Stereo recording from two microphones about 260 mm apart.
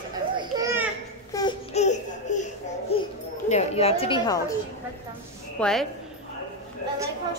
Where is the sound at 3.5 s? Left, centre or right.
Left.